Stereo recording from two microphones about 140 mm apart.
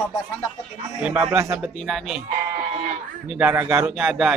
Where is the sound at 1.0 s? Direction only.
5° right (ahead or behind).